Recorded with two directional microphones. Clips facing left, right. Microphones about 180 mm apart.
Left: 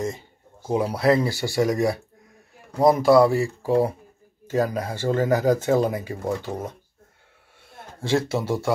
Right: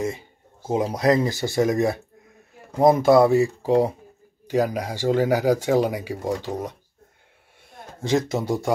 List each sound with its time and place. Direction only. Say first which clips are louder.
0.7 s speech: even; 20° right (ahead or behind)
8.3 s speech: even; 15° right (ahead or behind)